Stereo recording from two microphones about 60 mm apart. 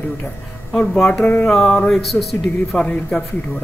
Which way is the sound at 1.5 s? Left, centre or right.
Centre.